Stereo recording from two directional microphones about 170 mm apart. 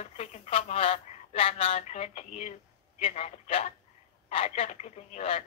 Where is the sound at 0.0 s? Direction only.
40° left (ahead or behind).